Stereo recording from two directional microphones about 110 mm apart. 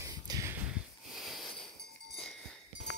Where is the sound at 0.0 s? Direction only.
30° right (ahead or behind).